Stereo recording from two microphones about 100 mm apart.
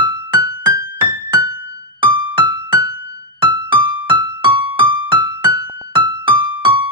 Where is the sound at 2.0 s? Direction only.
50° right (ahead or behind).